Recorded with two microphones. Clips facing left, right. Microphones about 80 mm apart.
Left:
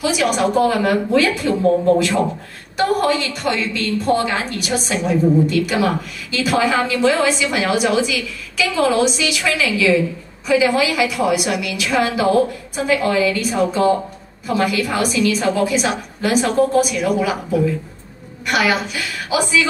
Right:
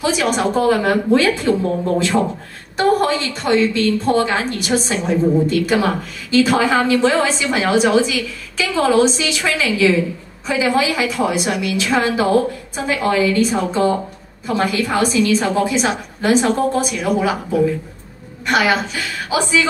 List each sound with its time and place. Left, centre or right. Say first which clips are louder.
0.0 s speech: even; right
2.8 s speech: right 1 dB; right
18.5 s speech: right 2 dB; right